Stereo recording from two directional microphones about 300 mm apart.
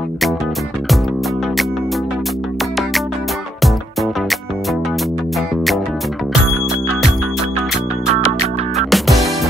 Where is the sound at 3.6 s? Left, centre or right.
Centre.